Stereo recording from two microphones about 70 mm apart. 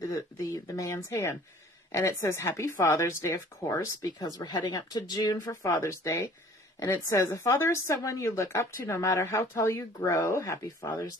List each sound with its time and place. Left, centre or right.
0.1 s a woman's voice: left
4.4 s a woman's voice: left
10.8 s speech: left